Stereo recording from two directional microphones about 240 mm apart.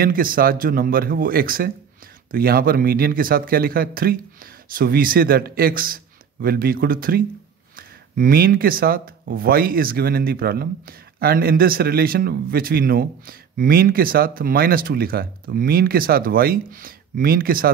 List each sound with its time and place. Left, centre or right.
0.0 s speech: right